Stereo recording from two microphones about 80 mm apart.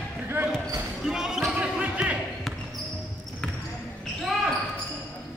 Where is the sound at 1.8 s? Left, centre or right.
Centre.